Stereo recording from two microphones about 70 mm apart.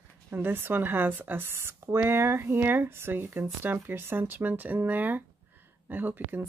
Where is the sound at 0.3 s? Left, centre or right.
Right.